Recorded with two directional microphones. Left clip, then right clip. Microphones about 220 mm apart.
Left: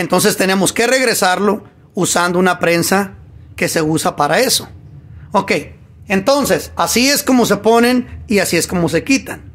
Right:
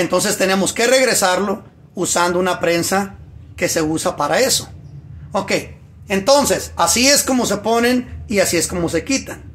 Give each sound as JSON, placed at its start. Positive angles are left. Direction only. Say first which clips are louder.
{"t": 0.0, "sound": "a woman's voice", "louder": "left 3 dB", "side_deg": 60}